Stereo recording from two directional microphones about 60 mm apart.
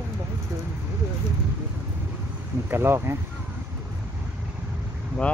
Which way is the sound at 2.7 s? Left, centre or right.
Right.